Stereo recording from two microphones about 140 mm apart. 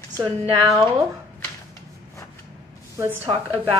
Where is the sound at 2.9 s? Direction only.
15° right (ahead or behind).